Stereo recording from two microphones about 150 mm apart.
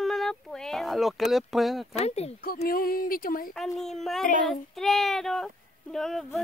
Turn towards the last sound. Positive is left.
turn(degrees=5)  # may be behind; listen again after turning